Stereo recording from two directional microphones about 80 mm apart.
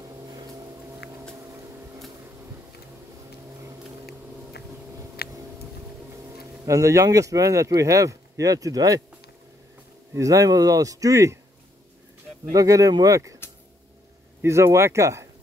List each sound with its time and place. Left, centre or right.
6.6 s speech: right
10.1 s speech: right
12.5 s speech: right
14.4 s speech: right